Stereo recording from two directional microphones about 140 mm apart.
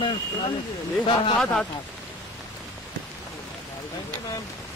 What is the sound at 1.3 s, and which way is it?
Speech, 5° left (ahead or behind).